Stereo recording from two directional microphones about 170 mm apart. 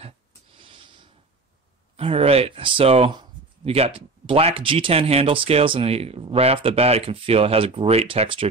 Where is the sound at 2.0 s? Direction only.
35° right (ahead or behind).